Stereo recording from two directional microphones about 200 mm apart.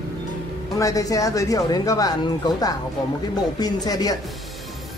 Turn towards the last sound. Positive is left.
turn(degrees=20)  # may be behind; listen again after turning